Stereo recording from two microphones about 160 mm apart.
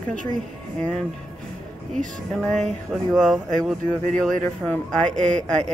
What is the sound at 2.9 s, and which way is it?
Speech, centre (ahead or behind).